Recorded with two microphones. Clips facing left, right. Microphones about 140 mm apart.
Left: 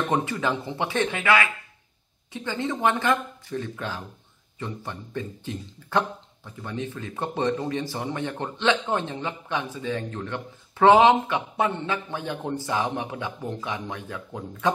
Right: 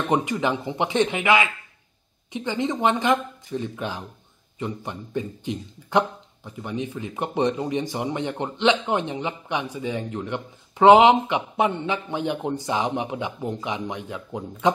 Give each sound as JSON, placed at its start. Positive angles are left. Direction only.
{"t": 0.1, "sound": "speech", "side_deg": -15}